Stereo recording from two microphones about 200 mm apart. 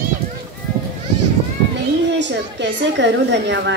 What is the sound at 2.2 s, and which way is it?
A woman's voice, 60° right (ahead or behind).